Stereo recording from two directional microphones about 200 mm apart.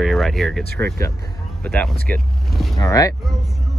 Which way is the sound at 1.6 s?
5° left (ahead or behind).